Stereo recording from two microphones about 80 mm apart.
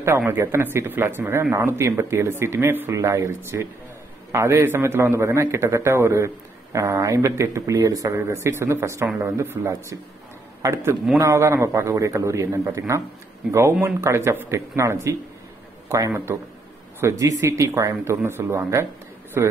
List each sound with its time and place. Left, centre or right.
0.3 s a man's voice: right
2.9 s a man's voice: right